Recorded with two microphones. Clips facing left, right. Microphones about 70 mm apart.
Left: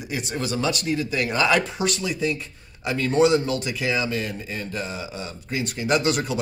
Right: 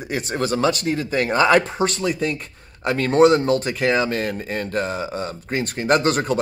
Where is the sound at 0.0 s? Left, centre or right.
Right.